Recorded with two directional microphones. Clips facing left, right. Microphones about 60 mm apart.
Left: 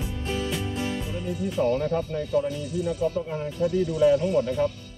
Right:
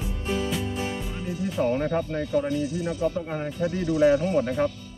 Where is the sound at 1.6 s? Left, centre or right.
Right.